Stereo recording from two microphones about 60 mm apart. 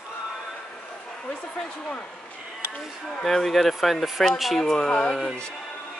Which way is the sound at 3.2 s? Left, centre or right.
Centre.